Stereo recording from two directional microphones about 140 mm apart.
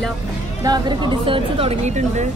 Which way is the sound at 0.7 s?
35° right (ahead or behind).